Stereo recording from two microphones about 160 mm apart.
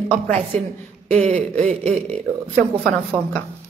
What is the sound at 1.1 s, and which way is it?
Speech, 40° right (ahead or behind).